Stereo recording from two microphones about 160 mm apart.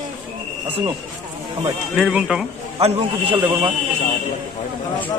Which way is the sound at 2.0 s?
5° right (ahead or behind).